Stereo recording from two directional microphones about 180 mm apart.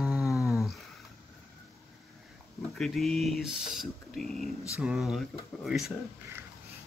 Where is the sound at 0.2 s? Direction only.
15° left (ahead or behind).